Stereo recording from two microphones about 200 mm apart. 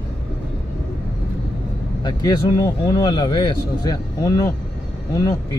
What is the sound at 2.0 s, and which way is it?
A man's voice, 20° left (ahead or behind).